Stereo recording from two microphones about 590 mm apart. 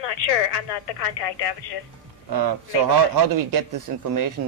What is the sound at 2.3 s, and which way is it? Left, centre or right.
Speech, right.